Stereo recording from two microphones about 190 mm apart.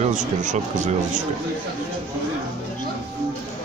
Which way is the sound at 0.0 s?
40° right (ahead or behind).